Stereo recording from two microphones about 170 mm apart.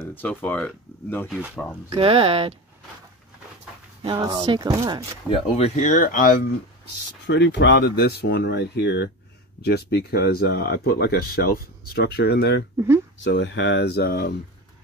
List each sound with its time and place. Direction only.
0.0 s speech: 10° left (ahead or behind)
1.3 s speech: 5° right (ahead or behind)
1.9 s speech: 35° right (ahead or behind)
4.0 s speech: 25° right (ahead or behind)
5.3 s speech: 35° left (ahead or behind)
5.9 s speech: 50° left (ahead or behind)
7.2 s speech: 90° left
9.6 s speech: 70° left (ahead or behind)
12.7 s speech: 15° right (ahead or behind)
13.2 s speech: 90° left; by 14.3 s 65° left (ahead or behind)